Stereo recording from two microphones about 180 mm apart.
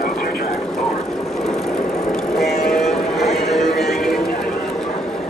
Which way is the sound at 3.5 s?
Centre (ahead or behind).